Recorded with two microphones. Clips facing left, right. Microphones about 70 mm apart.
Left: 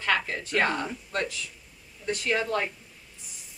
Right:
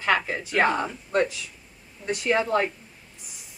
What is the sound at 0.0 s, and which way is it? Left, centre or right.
Speech, centre.